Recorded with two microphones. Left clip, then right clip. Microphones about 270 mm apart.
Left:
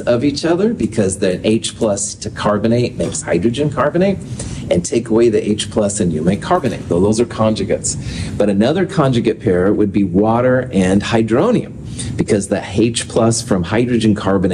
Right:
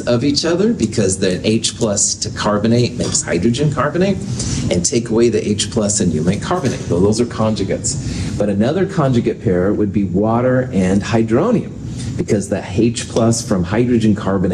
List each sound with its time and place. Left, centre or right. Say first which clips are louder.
0.0 s speech: left 1 dB; left